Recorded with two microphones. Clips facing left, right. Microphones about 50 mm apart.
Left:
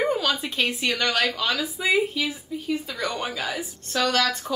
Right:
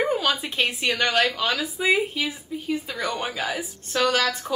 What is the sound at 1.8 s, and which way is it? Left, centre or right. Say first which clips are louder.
Speech: right 1 dB; centre.